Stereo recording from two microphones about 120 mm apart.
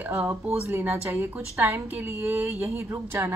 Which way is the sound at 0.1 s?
20° right (ahead or behind).